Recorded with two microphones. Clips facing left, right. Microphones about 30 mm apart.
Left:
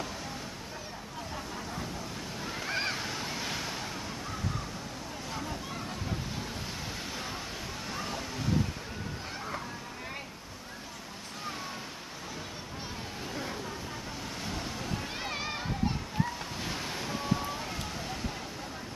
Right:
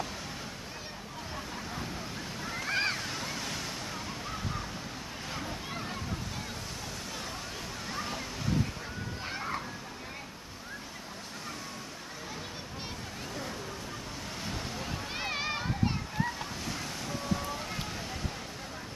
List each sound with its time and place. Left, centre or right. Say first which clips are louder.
2.4 s a sound: right 2 dB; centre
3.0 s waves: left 1 dB; centre
7.9 s slosh: even; centre
14.4 s vehicle: even; centre
15.1 s a sound: right 2 dB; centre
16.6 s waves: left 4 dB; left; by 17.7 s centre